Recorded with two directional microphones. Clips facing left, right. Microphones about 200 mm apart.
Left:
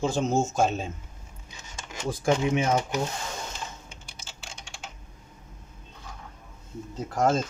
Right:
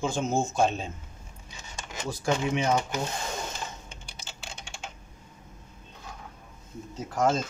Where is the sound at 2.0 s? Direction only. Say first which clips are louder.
Left 4 dB; 50° left (ahead or behind).